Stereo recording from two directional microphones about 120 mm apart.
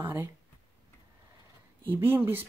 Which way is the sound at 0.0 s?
20° right (ahead or behind).